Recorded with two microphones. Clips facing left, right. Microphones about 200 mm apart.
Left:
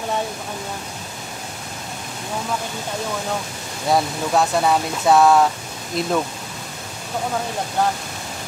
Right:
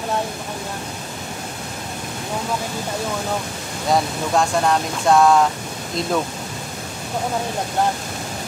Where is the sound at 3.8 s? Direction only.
Centre (ahead or behind).